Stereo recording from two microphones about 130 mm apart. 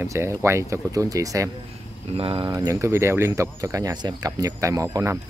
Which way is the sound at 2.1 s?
45° right (ahead or behind).